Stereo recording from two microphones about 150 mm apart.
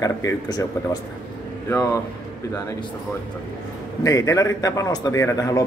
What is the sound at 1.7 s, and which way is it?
Speech, 20° left (ahead or behind).